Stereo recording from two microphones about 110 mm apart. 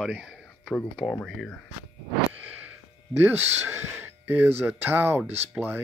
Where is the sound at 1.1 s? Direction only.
10° left (ahead or behind).